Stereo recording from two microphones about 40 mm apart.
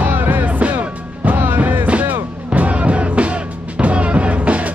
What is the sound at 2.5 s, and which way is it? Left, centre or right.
Music, right.